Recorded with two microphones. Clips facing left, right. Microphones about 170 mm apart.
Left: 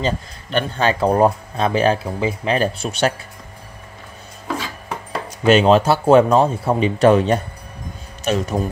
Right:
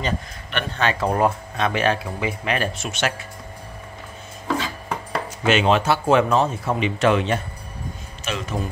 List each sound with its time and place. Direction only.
0.0 s speech: 35° left (ahead or behind)
5.4 s speech: 35° left (ahead or behind)